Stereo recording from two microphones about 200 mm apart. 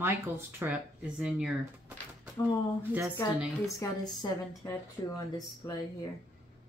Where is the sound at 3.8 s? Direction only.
15° left (ahead or behind).